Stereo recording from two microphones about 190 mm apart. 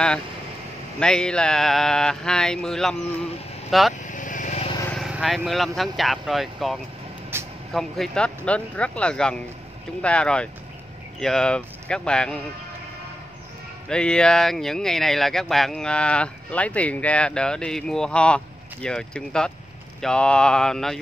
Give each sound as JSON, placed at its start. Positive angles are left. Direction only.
{"t": 0.9, "sound": "speech", "side_deg": 5}
{"t": 4.0, "sound": "vehicle", "side_deg": 40}
{"t": 4.8, "sound": "speech", "side_deg": 0}
{"t": 7.3, "sound": "vehicle", "side_deg": -10}
{"t": 7.7, "sound": "speech", "side_deg": 0}
{"t": 13.8, "sound": "speech", "side_deg": 5}